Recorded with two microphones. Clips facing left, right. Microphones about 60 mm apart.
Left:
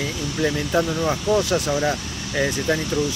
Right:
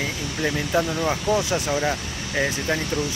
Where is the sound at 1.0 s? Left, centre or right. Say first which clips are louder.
Left 2 dB; centre.